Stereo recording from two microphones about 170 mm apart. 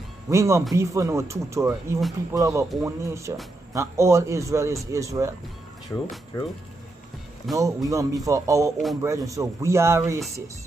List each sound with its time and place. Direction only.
0.3 s speech: 15° right (ahead or behind)
5.9 s speech: 15° left (ahead or behind)
7.5 s speech: 20° right (ahead or behind)